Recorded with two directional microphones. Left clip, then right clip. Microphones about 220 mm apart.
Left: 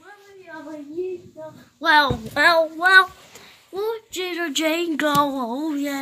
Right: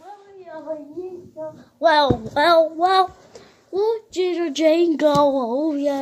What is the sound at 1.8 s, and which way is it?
Speech, 15° left (ahead or behind).